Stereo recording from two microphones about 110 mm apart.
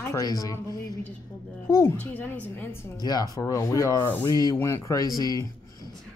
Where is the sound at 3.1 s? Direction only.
35° left (ahead or behind).